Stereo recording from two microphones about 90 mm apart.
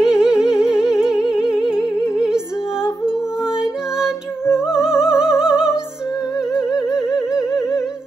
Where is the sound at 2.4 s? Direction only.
35° left (ahead or behind).